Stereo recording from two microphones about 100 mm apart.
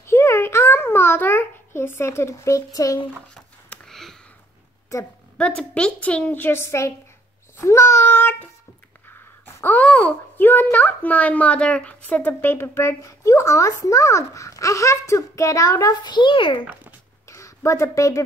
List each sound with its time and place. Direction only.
0.0 s babbling: 25° left (ahead or behind)
3.3 s a sound: 5° left (ahead or behind)
4.9 s a woman's voice: 30° left (ahead or behind)
5.4 s a woman's voice: 10° left (ahead or behind)
9.6 s a child's voice: 15° left (ahead or behind); by 16.6 s 55° left (ahead or behind)
17.3 s a sound: 30° left (ahead or behind)